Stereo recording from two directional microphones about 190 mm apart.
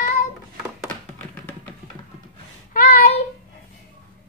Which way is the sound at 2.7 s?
50° left (ahead or behind).